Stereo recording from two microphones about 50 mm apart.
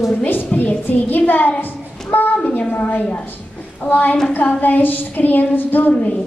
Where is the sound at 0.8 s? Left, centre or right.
Left.